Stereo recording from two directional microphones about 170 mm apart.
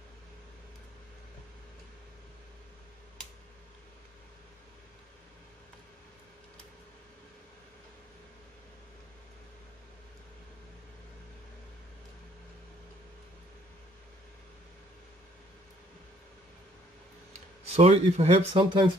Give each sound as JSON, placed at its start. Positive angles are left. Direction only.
{"t": 17.6, "sound": "speech", "side_deg": -35}